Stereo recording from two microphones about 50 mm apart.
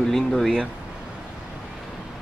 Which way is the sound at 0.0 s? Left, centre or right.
Centre.